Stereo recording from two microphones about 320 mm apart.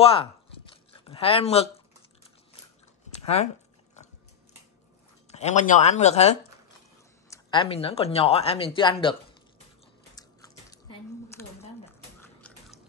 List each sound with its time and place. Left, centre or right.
0.0 s speech: centre
5.3 s speech: left
10.1 s biting: centre
12.2 s a sound: centre